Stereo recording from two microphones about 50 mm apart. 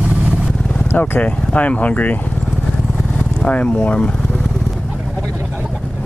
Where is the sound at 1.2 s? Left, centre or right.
Left.